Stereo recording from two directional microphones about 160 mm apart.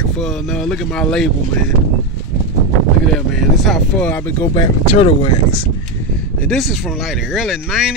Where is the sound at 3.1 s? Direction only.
Centre (ahead or behind).